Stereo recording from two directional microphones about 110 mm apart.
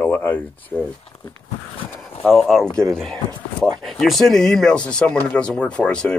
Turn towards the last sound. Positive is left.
turn(degrees=10)  # may be behind; listen again after turning